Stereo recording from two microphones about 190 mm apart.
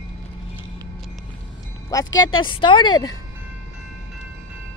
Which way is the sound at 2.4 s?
25° left (ahead or behind).